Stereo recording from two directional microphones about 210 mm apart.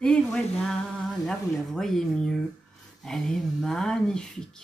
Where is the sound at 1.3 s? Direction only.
Centre (ahead or behind).